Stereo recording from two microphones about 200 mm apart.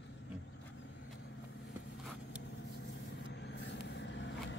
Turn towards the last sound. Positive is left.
turn(degrees=65)  # may be behind; listen again after turning